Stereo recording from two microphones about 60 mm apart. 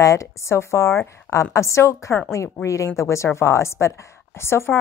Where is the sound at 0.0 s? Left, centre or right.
Left.